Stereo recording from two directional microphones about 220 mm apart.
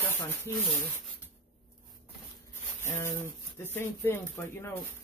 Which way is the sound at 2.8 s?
10° left (ahead or behind).